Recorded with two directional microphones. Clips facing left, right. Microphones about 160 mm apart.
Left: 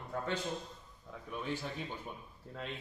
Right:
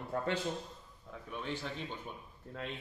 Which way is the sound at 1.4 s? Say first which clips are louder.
Left 1 dB; 10° left (ahead or behind).